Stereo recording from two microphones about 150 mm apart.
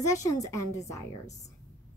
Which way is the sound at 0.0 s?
20° left (ahead or behind).